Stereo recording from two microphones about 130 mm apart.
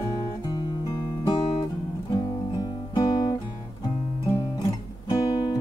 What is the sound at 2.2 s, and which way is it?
Guitar, 30° left (ahead or behind).